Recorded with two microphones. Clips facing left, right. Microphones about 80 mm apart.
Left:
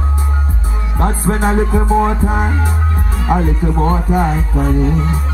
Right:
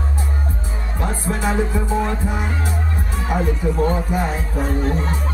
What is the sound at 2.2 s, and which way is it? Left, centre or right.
Speech, left.